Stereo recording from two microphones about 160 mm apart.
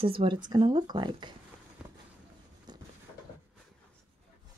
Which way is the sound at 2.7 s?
25° right (ahead or behind).